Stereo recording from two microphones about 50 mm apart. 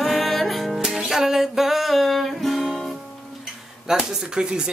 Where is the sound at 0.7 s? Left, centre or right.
Centre.